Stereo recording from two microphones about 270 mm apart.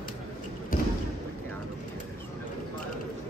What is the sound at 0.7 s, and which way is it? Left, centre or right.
Basketball bounce, left.